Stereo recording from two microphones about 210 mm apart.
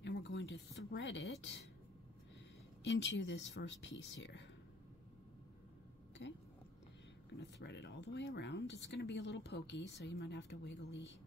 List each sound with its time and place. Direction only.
0.0 s speech: 55° left (ahead or behind)
2.8 s speech: 55° left (ahead or behind)
6.2 s speech: 55° left (ahead or behind)